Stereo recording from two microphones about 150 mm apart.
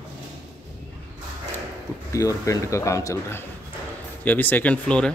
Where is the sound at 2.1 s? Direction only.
20° left (ahead or behind).